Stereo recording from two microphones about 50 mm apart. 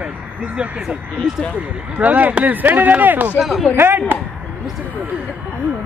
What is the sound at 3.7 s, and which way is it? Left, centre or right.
Speech, right.